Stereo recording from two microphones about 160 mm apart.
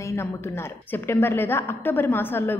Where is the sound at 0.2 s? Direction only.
15° left (ahead or behind).